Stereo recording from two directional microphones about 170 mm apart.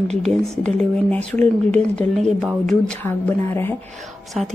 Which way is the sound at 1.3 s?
10° left (ahead or behind).